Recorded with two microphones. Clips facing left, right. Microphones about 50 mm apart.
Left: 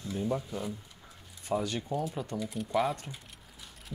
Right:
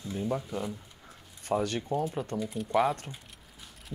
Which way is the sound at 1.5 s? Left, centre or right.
Right.